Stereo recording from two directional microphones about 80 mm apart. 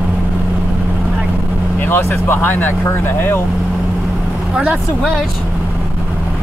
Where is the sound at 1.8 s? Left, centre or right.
Left.